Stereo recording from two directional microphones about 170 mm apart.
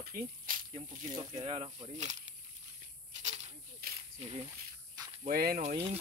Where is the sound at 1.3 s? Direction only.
35° right (ahead or behind).